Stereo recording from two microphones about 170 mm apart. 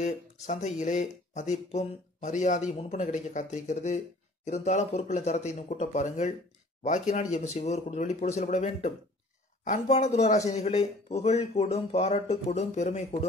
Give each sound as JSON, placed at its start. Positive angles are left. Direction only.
{"t": 0.0, "sound": "speech", "side_deg": 45}